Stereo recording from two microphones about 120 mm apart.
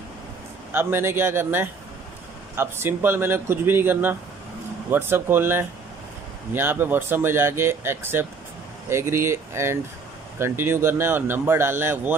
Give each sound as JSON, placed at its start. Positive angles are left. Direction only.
{"t": 0.7, "sound": "speech", "side_deg": -20}